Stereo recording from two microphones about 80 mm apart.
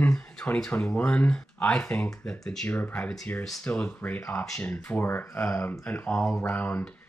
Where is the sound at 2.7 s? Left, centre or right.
Centre.